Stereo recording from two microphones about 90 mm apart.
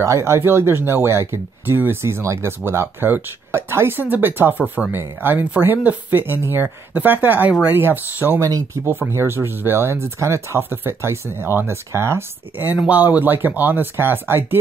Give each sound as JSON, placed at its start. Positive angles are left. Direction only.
{"t": 0.0, "sound": "speech", "side_deg": -30}
{"t": 8.4, "sound": "speech", "side_deg": -35}